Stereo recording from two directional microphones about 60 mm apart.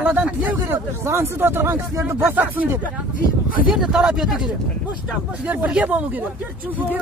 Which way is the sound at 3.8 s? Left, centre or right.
Centre.